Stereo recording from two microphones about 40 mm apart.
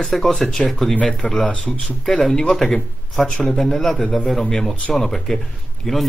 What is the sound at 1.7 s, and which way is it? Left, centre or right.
A man's voice, centre.